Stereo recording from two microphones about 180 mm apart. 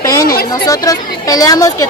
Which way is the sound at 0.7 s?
20° left (ahead or behind).